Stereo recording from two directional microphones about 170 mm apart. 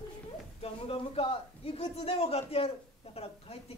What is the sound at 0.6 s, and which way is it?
A man's voice, 35° left (ahead or behind).